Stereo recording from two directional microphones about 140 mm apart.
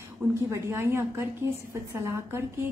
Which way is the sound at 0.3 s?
20° right (ahead or behind).